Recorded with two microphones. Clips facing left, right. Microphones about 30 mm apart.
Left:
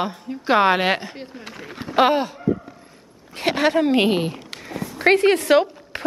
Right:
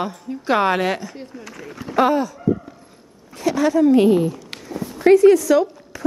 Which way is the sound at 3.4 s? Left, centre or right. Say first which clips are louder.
Right 2 dB; left.